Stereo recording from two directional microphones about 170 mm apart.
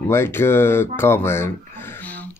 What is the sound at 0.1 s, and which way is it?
Speech, 15° left (ahead or behind).